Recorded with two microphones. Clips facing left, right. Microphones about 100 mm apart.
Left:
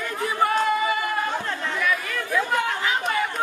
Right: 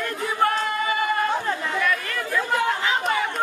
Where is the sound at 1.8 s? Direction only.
5° left (ahead or behind).